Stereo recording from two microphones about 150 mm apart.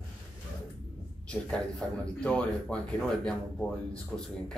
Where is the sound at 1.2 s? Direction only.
5° left (ahead or behind).